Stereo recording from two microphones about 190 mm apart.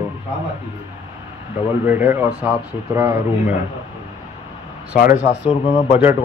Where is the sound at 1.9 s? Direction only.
10° right (ahead or behind).